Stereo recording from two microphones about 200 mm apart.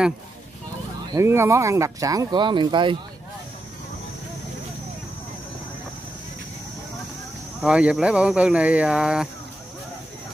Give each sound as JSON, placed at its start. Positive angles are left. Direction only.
{"t": 1.1, "sound": "speech", "side_deg": -15}
{"t": 7.6, "sound": "speech", "side_deg": -5}